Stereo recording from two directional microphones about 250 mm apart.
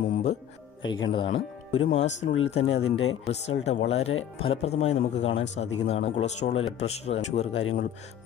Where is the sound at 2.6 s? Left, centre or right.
Left.